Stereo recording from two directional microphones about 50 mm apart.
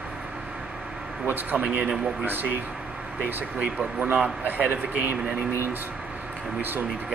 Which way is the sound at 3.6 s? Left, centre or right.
Right.